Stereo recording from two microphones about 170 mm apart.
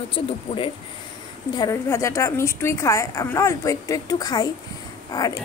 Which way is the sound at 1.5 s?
20° left (ahead or behind).